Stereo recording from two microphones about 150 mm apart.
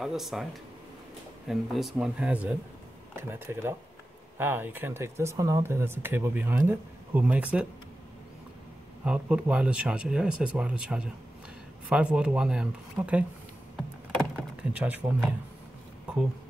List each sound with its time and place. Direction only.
0.0 s speech: centre (ahead or behind)
1.5 s speech: centre (ahead or behind)
9.0 s speech: 5° right (ahead or behind)
14.3 s speech: 10° right (ahead or behind)